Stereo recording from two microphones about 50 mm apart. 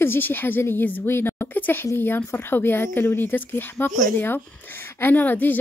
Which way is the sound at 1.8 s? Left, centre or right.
Left.